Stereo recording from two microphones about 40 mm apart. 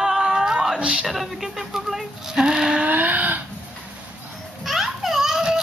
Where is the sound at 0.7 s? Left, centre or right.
Right.